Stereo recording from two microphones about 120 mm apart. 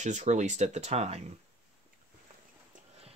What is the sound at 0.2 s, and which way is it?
Speech, 75° right (ahead or behind).